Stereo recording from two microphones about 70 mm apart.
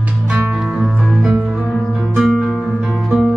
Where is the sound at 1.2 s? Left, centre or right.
Centre.